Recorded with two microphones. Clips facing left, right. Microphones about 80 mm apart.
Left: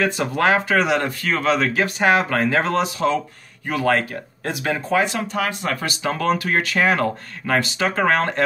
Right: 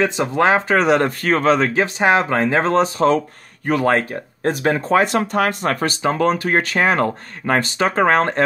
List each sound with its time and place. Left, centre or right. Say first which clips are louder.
0.0 s speech: right 3 dB; right
6.0 s speech: right 3 dB; right
7.8 s speech: right 5 dB; right